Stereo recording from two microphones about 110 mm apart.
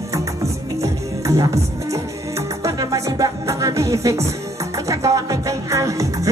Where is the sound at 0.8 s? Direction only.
30° right (ahead or behind).